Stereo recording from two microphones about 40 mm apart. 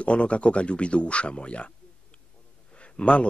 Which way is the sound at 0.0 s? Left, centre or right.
Left.